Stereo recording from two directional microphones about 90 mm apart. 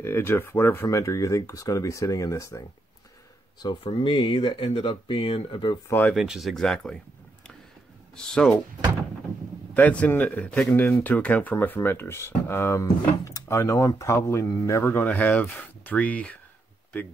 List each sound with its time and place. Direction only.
0.0 s speech: 25° left (ahead or behind)
0.8 s speech: 35° left (ahead or behind)
3.8 s speech: 75° left (ahead or behind); by 5.8 s 60° left (ahead or behind)
5.9 s speech: 20° left (ahead or behind)
6.1 s speech: 5° right (ahead or behind)
6.5 s speech: 10° left (ahead or behind)
8.2 s speech: 10° left (ahead or behind)
9.8 s speech: 15° left (ahead or behind)
10.7 s speech: 25° left (ahead or behind)
15.0 s speech: 15° left (ahead or behind)